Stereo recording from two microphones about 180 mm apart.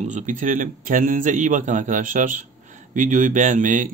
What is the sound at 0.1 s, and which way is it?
Speech, 45° right (ahead or behind).